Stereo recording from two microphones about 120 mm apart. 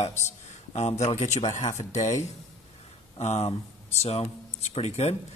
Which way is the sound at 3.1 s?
65° left (ahead or behind).